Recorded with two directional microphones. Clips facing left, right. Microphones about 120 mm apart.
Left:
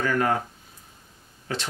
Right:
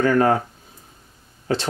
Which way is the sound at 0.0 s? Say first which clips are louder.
Right 7 dB; 35° right (ahead or behind).